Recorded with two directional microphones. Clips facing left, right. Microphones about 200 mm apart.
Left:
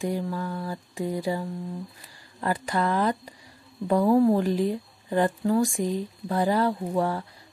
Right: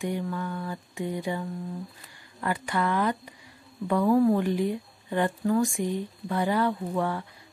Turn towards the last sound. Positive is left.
turn(degrees=35)  # may be behind; listen again after turning